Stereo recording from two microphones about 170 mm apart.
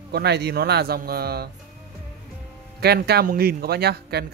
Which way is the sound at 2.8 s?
70° right (ahead or behind).